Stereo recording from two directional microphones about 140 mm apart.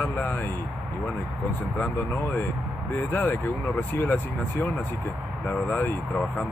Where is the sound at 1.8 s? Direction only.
10° left (ahead or behind).